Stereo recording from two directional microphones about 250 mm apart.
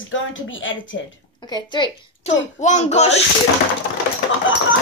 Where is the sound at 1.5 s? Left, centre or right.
Centre.